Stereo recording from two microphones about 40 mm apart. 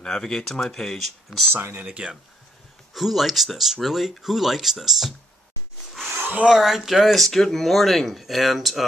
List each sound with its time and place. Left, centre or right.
0.0 s speech: centre
1.5 s speech: right
1.9 s speech: right
2.9 s speech: centre
6.0 s a sound: right
6.6 s speech: centre